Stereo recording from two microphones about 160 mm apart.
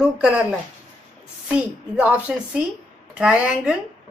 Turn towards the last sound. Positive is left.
turn(degrees=-5)  # may be behind; listen again after turning